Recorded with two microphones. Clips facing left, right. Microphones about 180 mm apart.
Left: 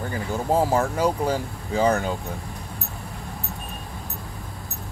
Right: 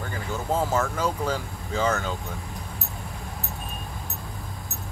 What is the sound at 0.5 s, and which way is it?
Speech, 35° left (ahead or behind).